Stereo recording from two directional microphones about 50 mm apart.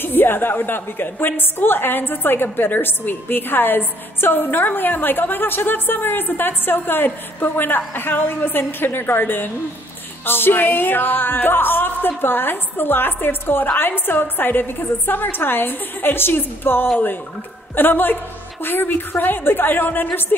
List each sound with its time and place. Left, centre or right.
0.0 s a woman's voice: left